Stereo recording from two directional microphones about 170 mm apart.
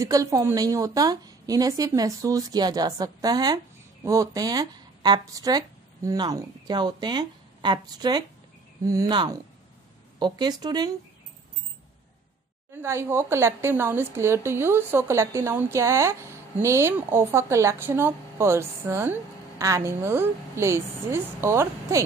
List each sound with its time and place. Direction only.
0.0 s a woman's voice: 20° right (ahead or behind)
12.7 s a woman's voice: 15° right (ahead or behind)